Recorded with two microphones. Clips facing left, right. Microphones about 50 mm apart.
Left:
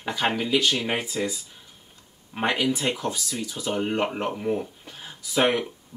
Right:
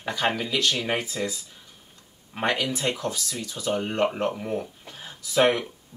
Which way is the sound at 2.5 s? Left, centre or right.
Centre.